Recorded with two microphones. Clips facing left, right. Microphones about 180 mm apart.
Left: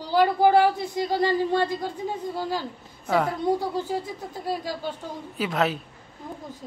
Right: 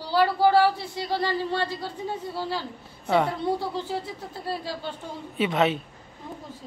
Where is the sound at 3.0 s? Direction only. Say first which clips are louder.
Right 1 dB; centre (ahead or behind).